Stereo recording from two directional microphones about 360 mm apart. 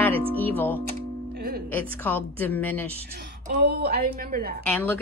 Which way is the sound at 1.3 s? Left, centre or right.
Right.